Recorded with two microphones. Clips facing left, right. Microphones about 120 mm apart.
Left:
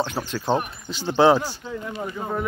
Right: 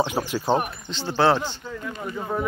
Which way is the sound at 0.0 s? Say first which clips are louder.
Right 2 dB; 10° right (ahead or behind).